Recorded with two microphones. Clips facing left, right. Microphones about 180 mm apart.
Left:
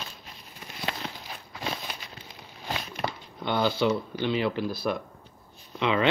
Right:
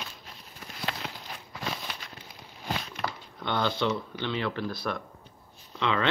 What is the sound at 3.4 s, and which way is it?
Speech, 10° left (ahead or behind).